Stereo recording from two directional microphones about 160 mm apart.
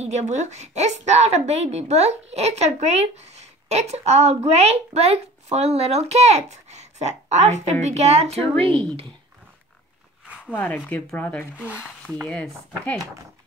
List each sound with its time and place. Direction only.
0.0 s a woman's voice: 45° right (ahead or behind)
10.2 s a sound: 10° right (ahead or behind)
10.5 s speech: 10° left (ahead or behind)